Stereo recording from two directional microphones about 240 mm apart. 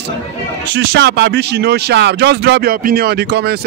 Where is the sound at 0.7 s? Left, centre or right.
Right.